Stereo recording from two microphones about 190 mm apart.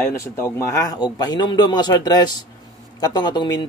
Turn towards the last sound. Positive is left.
turn(degrees=25)  # may be behind; listen again after turning